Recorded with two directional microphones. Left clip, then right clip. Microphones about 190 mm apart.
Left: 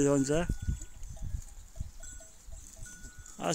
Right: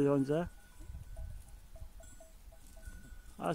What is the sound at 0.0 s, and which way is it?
Speech, 10° left (ahead or behind).